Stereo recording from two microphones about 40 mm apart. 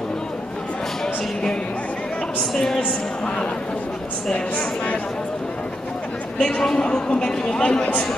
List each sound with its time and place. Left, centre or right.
2.5 s a man's voice: centre
6.4 s a man's voice: centre